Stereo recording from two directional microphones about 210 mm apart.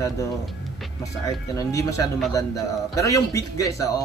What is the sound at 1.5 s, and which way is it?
A man's voice, 15° left (ahead or behind).